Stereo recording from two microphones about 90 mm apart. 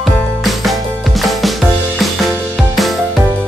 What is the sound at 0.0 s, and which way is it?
Music, centre (ahead or behind).